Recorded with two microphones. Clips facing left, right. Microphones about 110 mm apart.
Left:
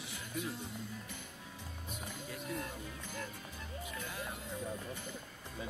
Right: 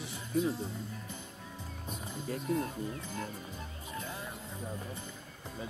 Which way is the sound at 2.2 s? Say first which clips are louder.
Right 9 dB; 35° right (ahead or behind).